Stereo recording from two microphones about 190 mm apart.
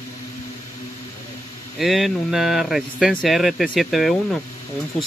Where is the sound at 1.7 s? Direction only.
Centre (ahead or behind).